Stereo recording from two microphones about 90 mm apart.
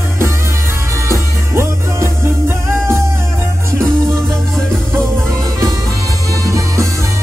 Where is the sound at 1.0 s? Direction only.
30° right (ahead or behind).